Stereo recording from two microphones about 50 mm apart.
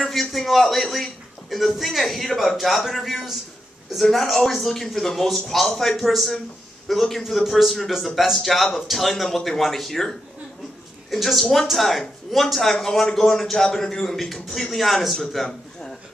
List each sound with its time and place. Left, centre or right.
0.1 s a man's voice: centre
4.0 s a man's voice: centre